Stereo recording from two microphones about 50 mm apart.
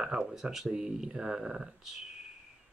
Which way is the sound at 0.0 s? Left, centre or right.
Centre.